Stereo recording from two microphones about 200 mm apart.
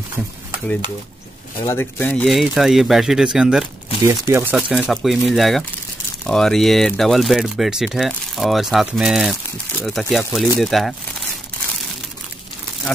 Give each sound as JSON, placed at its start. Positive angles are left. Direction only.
{"t": 1.6, "sound": "speech", "side_deg": 10}
{"t": 4.0, "sound": "speech", "side_deg": -15}
{"t": 4.5, "sound": "speech", "side_deg": -5}